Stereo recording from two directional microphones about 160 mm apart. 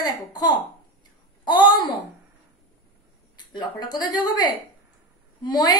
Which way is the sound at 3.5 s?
25° left (ahead or behind).